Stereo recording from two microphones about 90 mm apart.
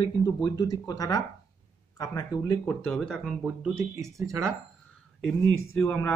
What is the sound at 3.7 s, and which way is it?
Speech, 35° right (ahead or behind).